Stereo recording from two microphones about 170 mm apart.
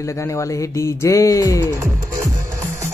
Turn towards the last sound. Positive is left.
turn(degrees=20)  # may be behind; listen again after turning